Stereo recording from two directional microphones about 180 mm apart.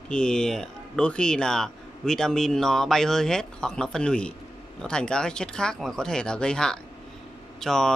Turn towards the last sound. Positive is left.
turn(degrees=0)  # may be behind; listen again after turning